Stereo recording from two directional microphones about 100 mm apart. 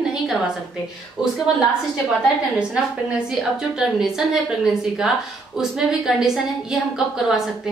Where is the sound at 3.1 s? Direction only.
5° right (ahead or behind).